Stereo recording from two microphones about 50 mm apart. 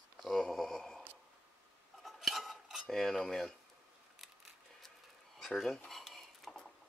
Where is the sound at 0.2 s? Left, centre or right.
Centre.